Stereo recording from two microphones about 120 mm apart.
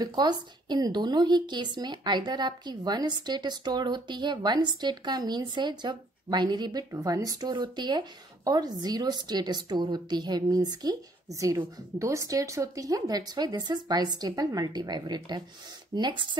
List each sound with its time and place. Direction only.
0.0 s a woman's voice: 35° right (ahead or behind)